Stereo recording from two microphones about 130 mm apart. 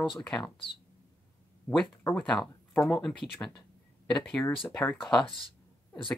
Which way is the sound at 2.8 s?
5° left (ahead or behind).